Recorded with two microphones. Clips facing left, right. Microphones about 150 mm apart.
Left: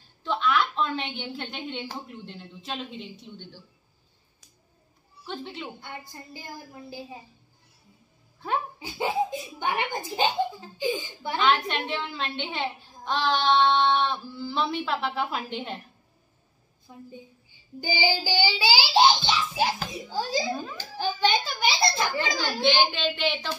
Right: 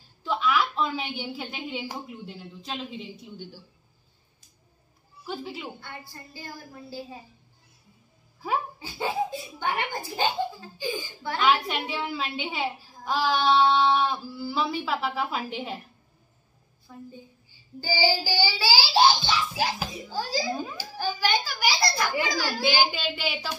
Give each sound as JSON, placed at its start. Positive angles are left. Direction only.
{"t": 0.2, "sound": "a sound", "side_deg": -5}
{"t": 1.9, "sound": "a woman's voice", "side_deg": -5}
{"t": 5.2, "sound": "a woman's voice", "side_deg": -5}
{"t": 5.8, "sound": "a child's voice", "side_deg": 20}
{"t": 8.7, "sound": "a child's voice", "side_deg": 20}
{"t": 11.3, "sound": "a woman's voice", "side_deg": -5}
{"t": 16.9, "sound": "a child's voice", "side_deg": 20}
{"t": 20.5, "sound": "a woman's voice", "side_deg": 0}
{"t": 21.2, "sound": "a sound", "side_deg": 25}
{"t": 22.2, "sound": "a child's voice", "side_deg": 20}
{"t": 22.6, "sound": "a woman's voice", "side_deg": -5}